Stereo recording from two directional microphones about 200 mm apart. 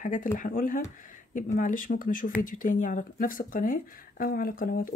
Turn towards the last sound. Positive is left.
turn(degrees=45)  # may be behind; listen again after turning